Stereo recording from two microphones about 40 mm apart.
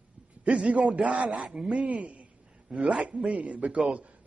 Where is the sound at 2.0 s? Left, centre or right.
Right.